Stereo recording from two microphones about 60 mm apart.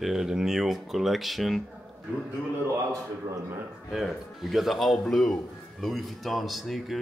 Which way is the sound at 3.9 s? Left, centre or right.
Centre.